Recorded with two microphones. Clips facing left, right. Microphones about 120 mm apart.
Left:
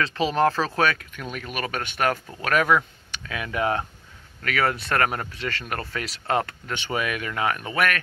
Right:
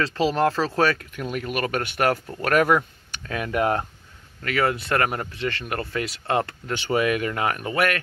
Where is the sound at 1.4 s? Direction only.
40° right (ahead or behind).